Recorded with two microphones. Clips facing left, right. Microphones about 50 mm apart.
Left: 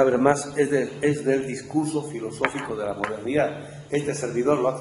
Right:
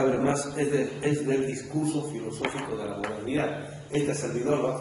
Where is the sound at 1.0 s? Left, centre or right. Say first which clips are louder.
Left 4 dB; left.